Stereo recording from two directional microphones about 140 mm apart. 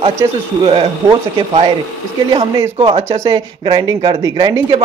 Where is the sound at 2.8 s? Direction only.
40° right (ahead or behind).